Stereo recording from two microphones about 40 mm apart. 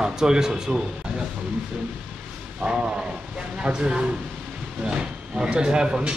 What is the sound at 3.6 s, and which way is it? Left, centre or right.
Speech, right.